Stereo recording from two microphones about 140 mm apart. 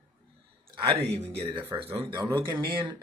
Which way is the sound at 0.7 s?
45° right (ahead or behind).